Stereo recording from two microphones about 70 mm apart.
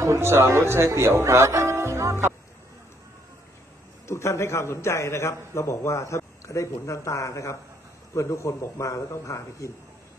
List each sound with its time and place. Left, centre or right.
0.0 s speech: right
4.1 s a man's voice: left